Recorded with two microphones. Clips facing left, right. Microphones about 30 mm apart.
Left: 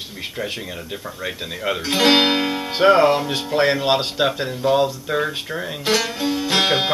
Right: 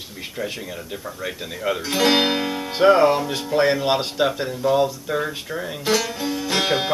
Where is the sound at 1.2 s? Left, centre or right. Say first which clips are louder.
Left 1 dB; centre.